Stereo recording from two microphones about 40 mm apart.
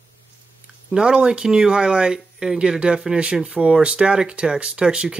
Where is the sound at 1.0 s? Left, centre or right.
Right.